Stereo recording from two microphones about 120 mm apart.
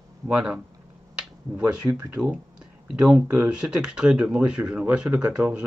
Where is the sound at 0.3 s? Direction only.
10° right (ahead or behind).